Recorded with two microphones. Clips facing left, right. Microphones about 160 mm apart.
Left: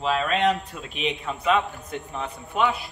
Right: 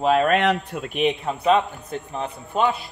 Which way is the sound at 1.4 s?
35° right (ahead or behind).